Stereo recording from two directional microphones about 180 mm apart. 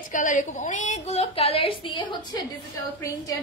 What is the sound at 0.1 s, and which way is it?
A woman's voice, 45° left (ahead or behind).